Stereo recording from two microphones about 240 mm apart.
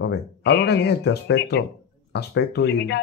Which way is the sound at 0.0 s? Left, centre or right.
Left.